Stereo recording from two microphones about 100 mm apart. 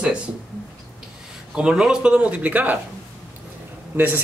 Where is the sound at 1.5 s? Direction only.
10° right (ahead or behind).